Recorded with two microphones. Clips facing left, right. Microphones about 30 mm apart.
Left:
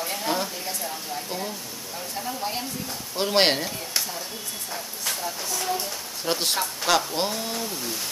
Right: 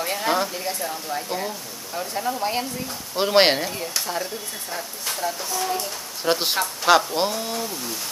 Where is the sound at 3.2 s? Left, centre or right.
Centre.